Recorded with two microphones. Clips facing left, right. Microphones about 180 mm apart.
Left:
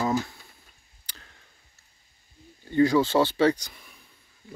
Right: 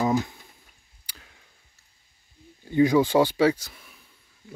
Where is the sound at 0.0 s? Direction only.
15° right (ahead or behind).